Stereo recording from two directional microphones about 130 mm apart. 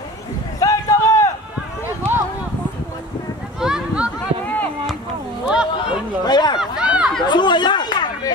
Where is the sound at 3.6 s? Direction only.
5° right (ahead or behind).